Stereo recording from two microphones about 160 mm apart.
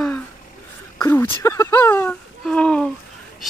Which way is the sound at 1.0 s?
15° left (ahead or behind).